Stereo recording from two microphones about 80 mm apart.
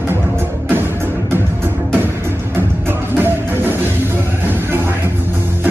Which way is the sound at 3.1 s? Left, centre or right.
Right.